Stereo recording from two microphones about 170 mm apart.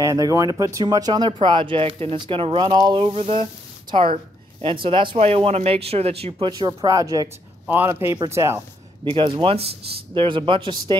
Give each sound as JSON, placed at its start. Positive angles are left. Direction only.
{"t": 0.0, "sound": "a woman's voice", "side_deg": -20}
{"t": 9.0, "sound": "a woman's voice", "side_deg": -30}